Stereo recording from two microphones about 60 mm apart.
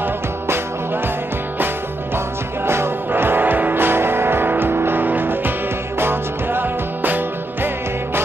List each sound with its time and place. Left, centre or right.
2.6 s music: right